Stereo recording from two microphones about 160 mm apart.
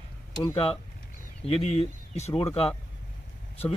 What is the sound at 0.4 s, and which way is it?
Speech, 30° left (ahead or behind).